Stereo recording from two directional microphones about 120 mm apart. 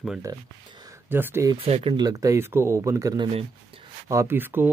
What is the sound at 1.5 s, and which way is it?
Speech, 55° right (ahead or behind).